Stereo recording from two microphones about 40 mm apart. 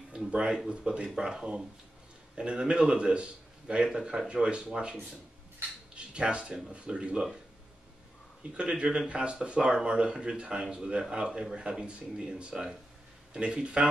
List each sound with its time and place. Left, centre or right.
0.3 s a man's voice: right
5.9 s a man's voice: right
8.5 s a man's voice: right